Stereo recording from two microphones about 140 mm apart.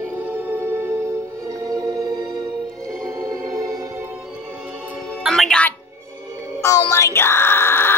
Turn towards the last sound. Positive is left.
turn(degrees=15)  # may be behind; listen again after turning